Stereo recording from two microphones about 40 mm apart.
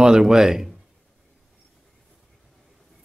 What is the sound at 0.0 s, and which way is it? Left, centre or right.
Speech, centre.